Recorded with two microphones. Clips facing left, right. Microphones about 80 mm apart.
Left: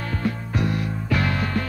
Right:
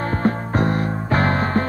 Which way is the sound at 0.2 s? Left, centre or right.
Right.